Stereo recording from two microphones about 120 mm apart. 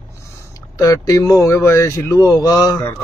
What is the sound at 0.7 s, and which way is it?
Speech, 30° left (ahead or behind).